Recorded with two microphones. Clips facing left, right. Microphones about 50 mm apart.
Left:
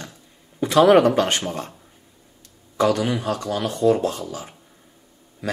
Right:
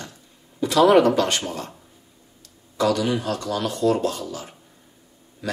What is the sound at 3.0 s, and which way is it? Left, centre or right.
Speech, left.